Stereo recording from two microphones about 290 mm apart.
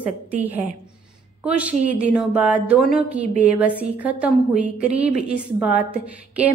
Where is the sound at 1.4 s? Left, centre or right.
Centre.